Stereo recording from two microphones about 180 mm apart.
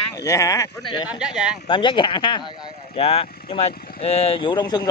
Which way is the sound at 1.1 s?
5° right (ahead or behind).